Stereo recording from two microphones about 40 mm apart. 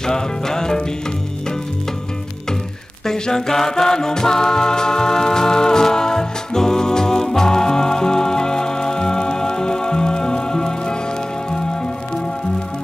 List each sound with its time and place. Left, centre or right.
0.0 s music: centre
3.1 s music: centre